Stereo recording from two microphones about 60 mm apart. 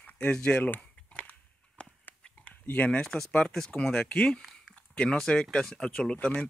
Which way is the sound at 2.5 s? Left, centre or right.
Left.